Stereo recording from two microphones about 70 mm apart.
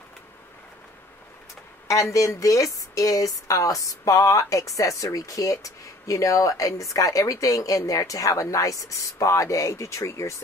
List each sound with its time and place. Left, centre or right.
1.9 s speech: left